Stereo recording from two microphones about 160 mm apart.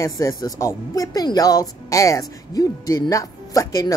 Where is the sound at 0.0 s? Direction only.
20° left (ahead or behind).